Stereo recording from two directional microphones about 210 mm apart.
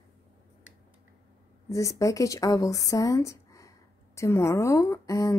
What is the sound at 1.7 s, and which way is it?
Speech, 15° left (ahead or behind).